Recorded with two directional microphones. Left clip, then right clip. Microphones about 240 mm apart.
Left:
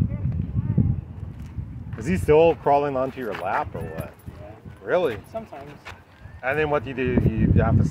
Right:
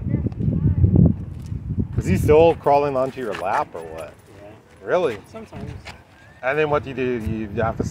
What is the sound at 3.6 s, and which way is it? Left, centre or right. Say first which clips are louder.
Speech: right 2 dB; centre.